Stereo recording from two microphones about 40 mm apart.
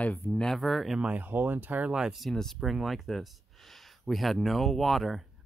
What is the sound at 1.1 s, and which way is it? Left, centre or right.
Speech, right.